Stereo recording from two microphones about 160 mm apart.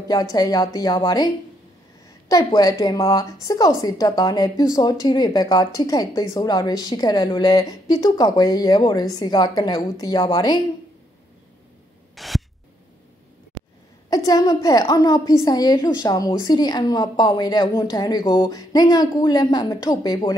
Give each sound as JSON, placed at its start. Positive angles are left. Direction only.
{"t": 0.1, "sound": "a woman's voice", "side_deg": 25}
{"t": 12.2, "sound": "a sound", "side_deg": 0}
{"t": 14.1, "sound": "a woman's voice", "side_deg": 25}